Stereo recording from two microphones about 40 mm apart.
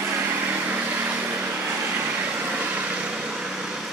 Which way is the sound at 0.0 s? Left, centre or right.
Right.